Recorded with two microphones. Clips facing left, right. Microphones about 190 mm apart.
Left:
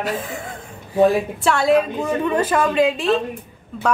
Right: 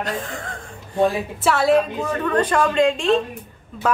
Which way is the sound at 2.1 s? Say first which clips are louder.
Left 1 dB; 10° left (ahead or behind).